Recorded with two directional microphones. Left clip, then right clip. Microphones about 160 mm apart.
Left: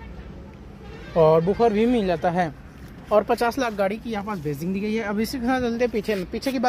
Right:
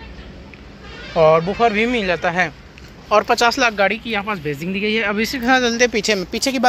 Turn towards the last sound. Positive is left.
turn(degrees=-15)  # may be behind; listen again after turning